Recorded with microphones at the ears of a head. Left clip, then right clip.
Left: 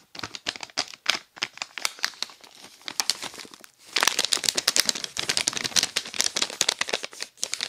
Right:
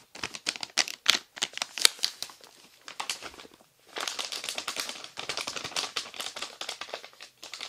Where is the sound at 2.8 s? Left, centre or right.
Left.